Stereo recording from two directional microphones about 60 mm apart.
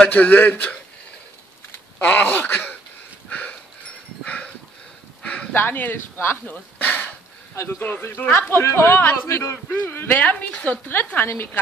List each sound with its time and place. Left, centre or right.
0.1 s a woman's voice: left
2.0 s speech: left
3.3 s a sound: left
5.5 s speech: left
6.5 s a sound: left
7.8 s speech: left
10.2 s a woman's voice: left